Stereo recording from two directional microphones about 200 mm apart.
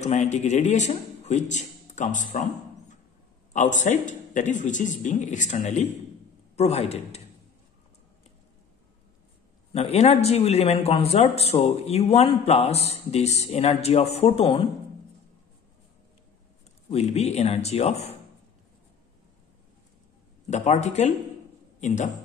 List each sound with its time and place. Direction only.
0.0 s a man's voice: 35° left (ahead or behind)
3.5 s a man's voice: 40° left (ahead or behind)
9.7 s a man's voice: 30° left (ahead or behind)
16.9 s a man's voice: 30° left (ahead or behind)
20.4 s a man's voice: 35° left (ahead or behind)